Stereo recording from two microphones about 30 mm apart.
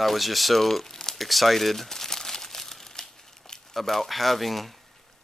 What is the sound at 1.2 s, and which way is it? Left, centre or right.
Crumpling, centre.